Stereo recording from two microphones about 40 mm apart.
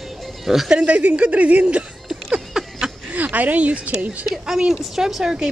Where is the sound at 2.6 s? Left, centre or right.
Centre.